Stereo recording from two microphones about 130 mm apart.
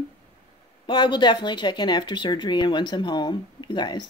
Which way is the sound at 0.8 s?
35° left (ahead or behind).